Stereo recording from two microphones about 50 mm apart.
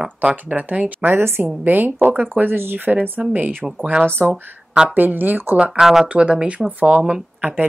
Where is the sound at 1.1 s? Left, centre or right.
Right.